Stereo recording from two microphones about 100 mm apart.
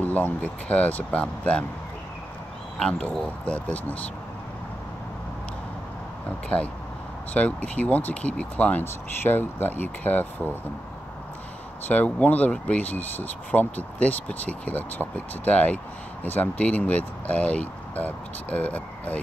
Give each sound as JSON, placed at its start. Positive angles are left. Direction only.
{"t": 0.0, "sound": "speech", "side_deg": 15}
{"t": 2.8, "sound": "speech", "side_deg": 10}
{"t": 6.5, "sound": "speech", "side_deg": 15}
{"t": 11.9, "sound": "speech", "side_deg": 15}